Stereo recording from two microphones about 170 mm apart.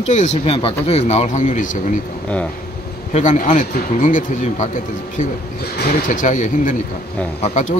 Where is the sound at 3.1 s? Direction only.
45° left (ahead or behind).